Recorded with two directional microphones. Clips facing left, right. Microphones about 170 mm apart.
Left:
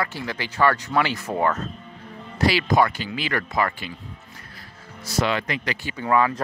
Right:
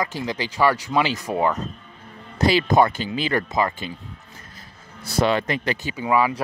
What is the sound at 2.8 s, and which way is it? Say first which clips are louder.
Speech: right 3 dB; 20° right (ahead or behind).